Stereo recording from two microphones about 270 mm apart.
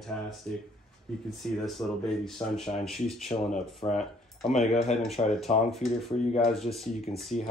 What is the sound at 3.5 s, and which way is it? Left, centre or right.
Speech, left.